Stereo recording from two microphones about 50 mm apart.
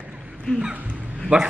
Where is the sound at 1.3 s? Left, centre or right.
Right.